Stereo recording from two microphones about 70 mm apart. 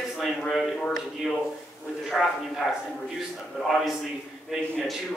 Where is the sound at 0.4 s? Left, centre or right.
Centre.